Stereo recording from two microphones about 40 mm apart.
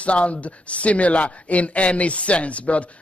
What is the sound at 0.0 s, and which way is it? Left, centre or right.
Speech, left.